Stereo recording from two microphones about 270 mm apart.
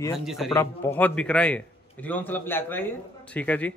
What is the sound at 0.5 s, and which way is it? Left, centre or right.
A man's voice, centre.